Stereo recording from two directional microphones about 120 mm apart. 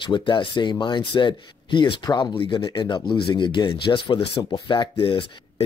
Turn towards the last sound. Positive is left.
turn(degrees=45)  # may be behind; listen again after turning